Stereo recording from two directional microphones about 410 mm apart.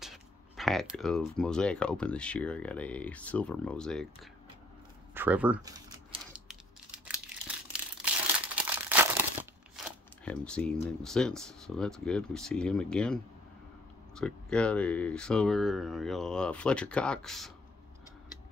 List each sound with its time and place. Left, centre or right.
0.0 s speech: centre
5.1 s typing: centre
8.8 s crumpling: centre
9.8 s a sound: centre
10.2 s speech: centre